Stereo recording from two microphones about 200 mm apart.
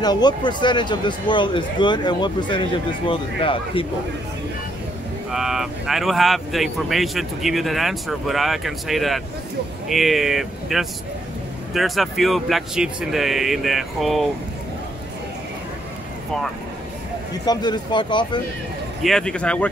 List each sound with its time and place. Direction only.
0.0 s speech: 20° left (ahead or behind)
5.3 s speech: centre (ahead or behind)
17.5 s speech: 20° left (ahead or behind)
19.0 s speech: 5° left (ahead or behind)